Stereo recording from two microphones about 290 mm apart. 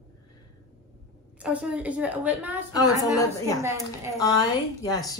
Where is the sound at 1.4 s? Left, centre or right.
Centre.